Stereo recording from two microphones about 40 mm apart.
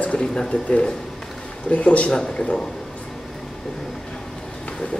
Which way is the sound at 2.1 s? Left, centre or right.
Left.